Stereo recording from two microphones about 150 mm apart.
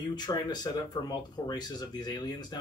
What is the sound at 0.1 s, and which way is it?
Speech, 30° left (ahead or behind).